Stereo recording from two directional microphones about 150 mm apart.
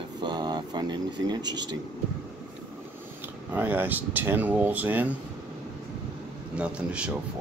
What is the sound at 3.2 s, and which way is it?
Speech, 10° right (ahead or behind).